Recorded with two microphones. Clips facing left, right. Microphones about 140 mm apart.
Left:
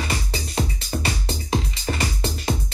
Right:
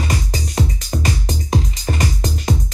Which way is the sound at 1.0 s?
40° right (ahead or behind).